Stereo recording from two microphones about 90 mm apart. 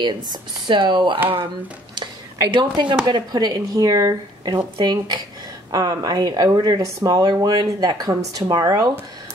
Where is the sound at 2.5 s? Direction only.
60° right (ahead or behind).